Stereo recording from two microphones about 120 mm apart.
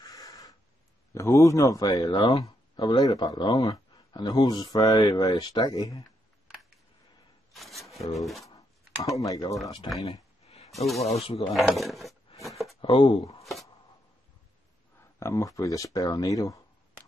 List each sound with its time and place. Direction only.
0.0 s a sound: 30° left (ahead or behind)
1.1 s speech: 25° left (ahead or behind)
7.5 s a sound: centre (ahead or behind)
8.2 s speech: centre (ahead or behind)
9.1 s speech: 30° left (ahead or behind)
10.7 s speech: centre (ahead or behind)
11.1 s speech: 55° left (ahead or behind)
11.5 s speech: centre (ahead or behind)
12.4 s a sound: centre (ahead or behind)
12.8 s speech: 45° left (ahead or behind)
13.4 s shuffling cards: centre (ahead or behind)
15.1 s speech: 25° left (ahead or behind)